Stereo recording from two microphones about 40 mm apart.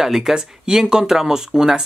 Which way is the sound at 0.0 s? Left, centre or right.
Centre.